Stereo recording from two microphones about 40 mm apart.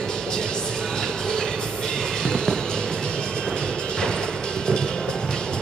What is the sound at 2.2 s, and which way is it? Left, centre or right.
Music, centre.